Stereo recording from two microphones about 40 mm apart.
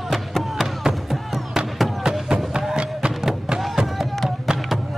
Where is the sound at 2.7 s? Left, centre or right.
Right.